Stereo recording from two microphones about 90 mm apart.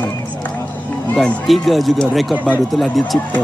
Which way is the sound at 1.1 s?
5° left (ahead or behind).